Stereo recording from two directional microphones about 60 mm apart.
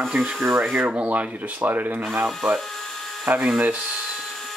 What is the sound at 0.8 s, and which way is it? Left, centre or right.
Speech, right.